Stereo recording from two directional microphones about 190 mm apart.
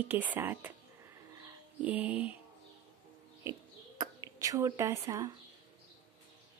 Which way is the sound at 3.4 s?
20° right (ahead or behind).